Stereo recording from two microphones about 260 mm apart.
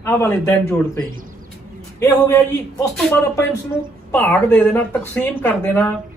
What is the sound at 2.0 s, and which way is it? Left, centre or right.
Speech, centre.